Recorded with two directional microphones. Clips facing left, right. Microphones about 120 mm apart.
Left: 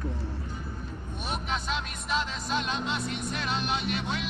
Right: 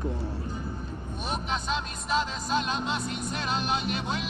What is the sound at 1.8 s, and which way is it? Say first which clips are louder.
Music: right 3 dB; 40° right (ahead or behind).